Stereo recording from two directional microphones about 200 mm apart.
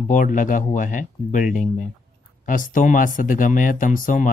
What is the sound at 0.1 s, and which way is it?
Speech, 40° left (ahead or behind).